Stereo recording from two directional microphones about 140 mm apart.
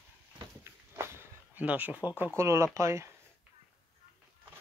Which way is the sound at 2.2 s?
15° right (ahead or behind).